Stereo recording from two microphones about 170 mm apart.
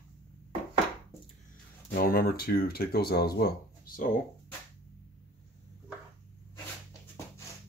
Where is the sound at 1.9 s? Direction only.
60° left (ahead or behind).